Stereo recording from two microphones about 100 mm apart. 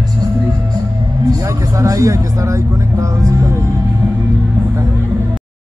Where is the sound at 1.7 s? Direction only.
35° right (ahead or behind).